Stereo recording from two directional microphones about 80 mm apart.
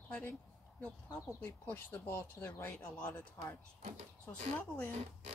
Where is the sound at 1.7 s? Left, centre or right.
Left.